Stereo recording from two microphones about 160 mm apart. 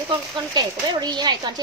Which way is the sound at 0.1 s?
25° right (ahead or behind).